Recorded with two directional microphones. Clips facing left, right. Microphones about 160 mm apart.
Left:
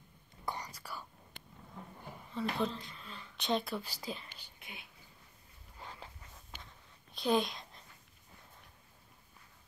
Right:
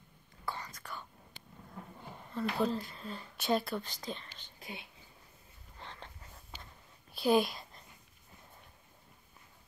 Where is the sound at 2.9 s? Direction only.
40° right (ahead or behind).